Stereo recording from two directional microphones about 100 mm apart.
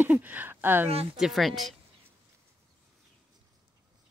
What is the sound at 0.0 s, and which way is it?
Speech, 15° right (ahead or behind).